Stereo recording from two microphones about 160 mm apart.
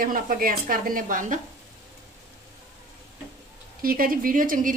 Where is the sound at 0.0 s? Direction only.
60° right (ahead or behind).